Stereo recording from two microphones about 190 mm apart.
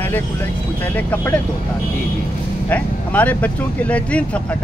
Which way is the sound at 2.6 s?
10° left (ahead or behind).